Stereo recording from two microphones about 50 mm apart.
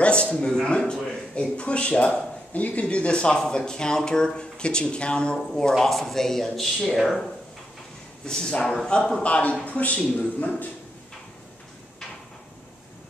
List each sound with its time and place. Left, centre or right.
0.0 s a man's voice: left; by 7.3 s centre
8.3 s speech: centre
9.2 s speech: left